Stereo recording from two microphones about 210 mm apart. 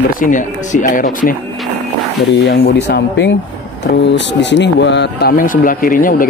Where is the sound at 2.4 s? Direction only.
50° left (ahead or behind).